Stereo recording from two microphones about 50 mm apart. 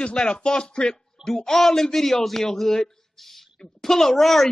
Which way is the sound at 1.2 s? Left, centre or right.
Centre.